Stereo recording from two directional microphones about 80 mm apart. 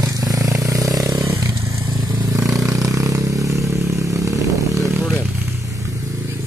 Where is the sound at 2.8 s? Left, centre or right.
Right.